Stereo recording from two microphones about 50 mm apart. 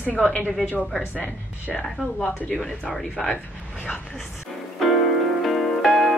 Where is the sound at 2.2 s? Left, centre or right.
Left.